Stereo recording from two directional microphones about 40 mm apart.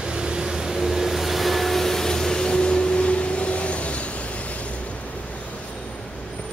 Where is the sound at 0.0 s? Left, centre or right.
Right; by 4.7 s left.